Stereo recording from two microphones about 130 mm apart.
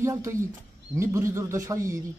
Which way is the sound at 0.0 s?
20° right (ahead or behind).